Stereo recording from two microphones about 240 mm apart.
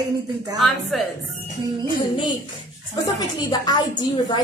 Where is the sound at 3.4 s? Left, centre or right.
Centre.